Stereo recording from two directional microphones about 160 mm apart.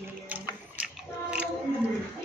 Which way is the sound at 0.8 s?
10° right (ahead or behind).